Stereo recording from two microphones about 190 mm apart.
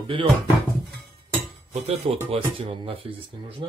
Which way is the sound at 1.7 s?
35° right (ahead or behind).